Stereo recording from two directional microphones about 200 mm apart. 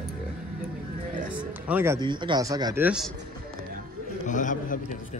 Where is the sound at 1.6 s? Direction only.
10° right (ahead or behind).